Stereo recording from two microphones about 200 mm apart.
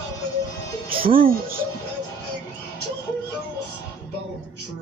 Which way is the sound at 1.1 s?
45° right (ahead or behind).